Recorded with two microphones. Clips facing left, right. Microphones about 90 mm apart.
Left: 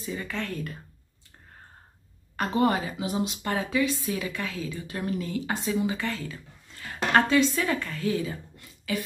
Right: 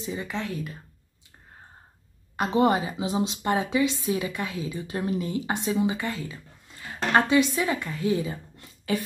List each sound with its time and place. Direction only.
0.0 s speech: 20° right (ahead or behind)
2.3 s speech: 20° right (ahead or behind)
5.9 s speech: 10° right (ahead or behind); by 9.0 s 30° right (ahead or behind)